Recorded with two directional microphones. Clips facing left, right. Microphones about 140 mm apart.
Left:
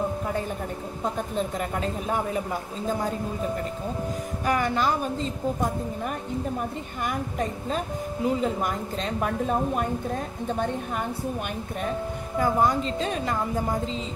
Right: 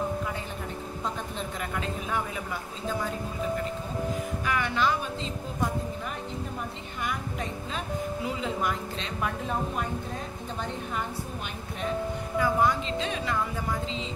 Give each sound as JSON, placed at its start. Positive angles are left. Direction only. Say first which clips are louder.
{"t": 1.0, "sound": "speech", "louder": "left 7 dB", "side_deg": 40}
{"t": 4.5, "sound": "speech", "louder": "left 4 dB", "side_deg": 40}
{"t": 7.1, "sound": "speech", "louder": "left 5 dB", "side_deg": 45}
{"t": 12.4, "sound": "speech", "louder": "left 2 dB", "side_deg": 40}